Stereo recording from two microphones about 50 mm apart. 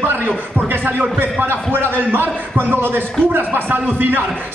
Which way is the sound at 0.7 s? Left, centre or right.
Right.